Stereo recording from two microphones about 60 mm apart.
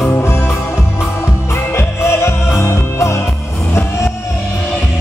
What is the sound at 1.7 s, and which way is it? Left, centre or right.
Music, left.